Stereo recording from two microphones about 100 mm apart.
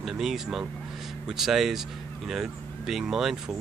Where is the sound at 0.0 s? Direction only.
5° right (ahead or behind).